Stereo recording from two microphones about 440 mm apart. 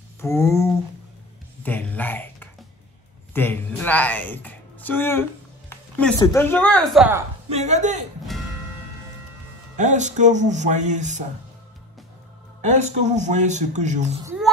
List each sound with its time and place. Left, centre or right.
0.2 s a woman's voice: centre
9.8 s speech: centre
12.7 s speech: centre